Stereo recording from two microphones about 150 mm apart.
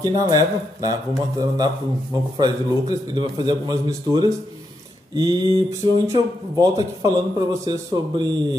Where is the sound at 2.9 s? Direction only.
25° right (ahead or behind).